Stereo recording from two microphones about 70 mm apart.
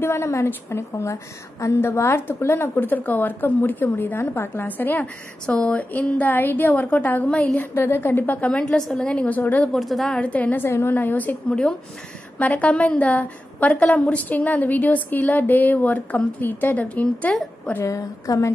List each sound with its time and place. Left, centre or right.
0.0 s a woman's voice: left
7.7 s a woman's voice: left
9.7 s a woman's voice: centre
10.0 s a woman's voice: centre
12.4 s a woman's voice: left
17.8 s a woman's voice: left